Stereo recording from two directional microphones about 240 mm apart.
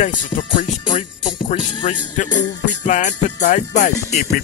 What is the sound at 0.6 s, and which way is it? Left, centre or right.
Music, left.